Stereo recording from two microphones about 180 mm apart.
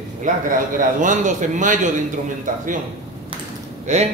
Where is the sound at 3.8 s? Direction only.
40° right (ahead or behind).